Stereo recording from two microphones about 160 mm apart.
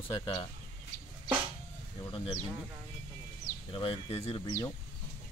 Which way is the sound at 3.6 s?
35° left (ahead or behind).